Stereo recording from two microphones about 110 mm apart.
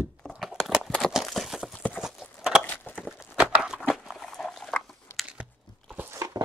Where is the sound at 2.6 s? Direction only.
15° left (ahead or behind).